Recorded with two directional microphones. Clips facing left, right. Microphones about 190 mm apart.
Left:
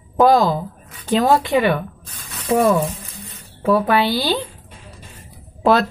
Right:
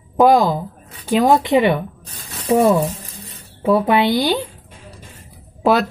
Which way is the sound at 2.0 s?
35° right (ahead or behind).